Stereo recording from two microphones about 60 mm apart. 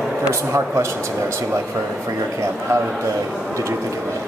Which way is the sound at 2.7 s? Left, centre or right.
Right.